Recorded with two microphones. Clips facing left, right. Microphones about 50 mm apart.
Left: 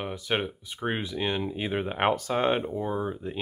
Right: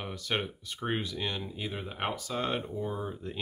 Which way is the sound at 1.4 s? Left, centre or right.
Left.